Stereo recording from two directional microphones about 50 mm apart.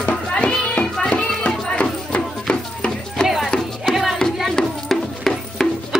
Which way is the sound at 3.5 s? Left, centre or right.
Centre.